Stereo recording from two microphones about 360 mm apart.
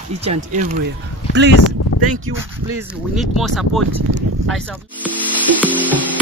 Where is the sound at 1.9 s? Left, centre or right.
Left.